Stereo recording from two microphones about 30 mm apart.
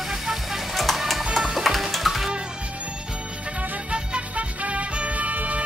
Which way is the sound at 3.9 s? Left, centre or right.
Right.